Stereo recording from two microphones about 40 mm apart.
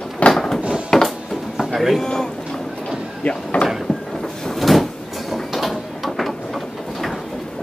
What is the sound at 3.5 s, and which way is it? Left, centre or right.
Speech, left.